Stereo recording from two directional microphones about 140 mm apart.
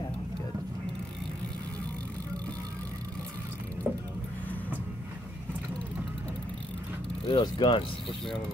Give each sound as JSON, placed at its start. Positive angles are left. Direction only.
{"t": 3.9, "sound": "mechanisms", "side_deg": -10}
{"t": 7.2, "sound": "speech", "side_deg": 35}